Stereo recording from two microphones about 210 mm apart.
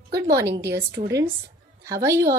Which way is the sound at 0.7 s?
15° right (ahead or behind).